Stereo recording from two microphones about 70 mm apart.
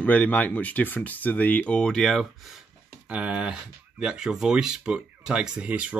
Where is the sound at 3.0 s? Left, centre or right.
Right.